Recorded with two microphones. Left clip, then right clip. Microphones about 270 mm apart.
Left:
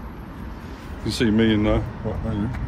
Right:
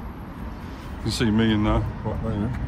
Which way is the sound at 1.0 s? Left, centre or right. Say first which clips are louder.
Left 3 dB; centre.